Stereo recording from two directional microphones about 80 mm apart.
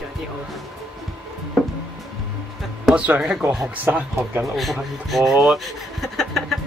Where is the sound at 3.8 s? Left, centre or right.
Right.